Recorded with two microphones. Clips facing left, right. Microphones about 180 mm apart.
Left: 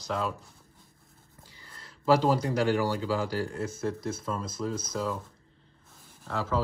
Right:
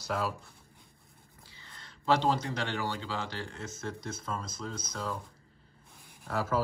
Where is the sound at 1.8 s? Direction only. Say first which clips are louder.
Left 4 dB; 5° left (ahead or behind).